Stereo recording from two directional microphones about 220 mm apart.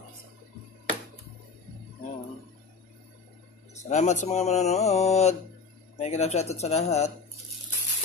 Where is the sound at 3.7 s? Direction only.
30° left (ahead or behind).